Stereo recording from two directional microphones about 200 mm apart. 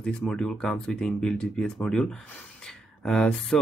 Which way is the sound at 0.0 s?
5° left (ahead or behind).